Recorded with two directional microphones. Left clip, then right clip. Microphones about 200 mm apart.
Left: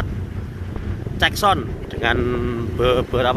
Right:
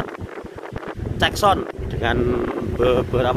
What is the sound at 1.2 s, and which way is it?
Speech, 20° right (ahead or behind).